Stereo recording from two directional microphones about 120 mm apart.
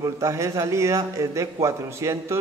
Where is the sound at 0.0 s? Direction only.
25° right (ahead or behind).